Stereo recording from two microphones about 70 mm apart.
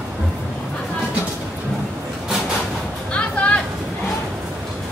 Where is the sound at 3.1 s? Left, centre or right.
Centre.